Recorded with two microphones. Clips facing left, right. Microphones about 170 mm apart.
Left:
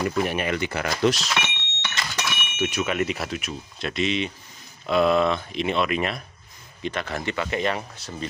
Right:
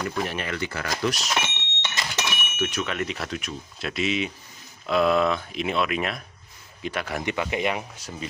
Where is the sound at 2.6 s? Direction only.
10° left (ahead or behind).